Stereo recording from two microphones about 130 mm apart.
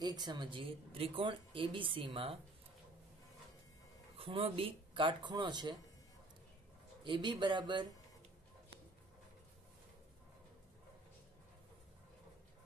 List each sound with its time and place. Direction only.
0.0 s speech: 35° right (ahead or behind)
4.2 s speech: 45° right (ahead or behind)
7.0 s speech: 40° right (ahead or behind)